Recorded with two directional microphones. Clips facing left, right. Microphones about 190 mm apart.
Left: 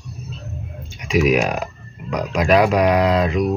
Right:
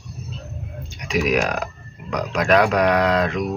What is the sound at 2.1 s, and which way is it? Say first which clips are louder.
Speech: left 2 dB; 10° left (ahead or behind).